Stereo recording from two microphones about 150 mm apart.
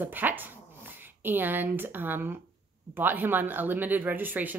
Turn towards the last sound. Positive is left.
turn(degrees=-10)  # may be behind; listen again after turning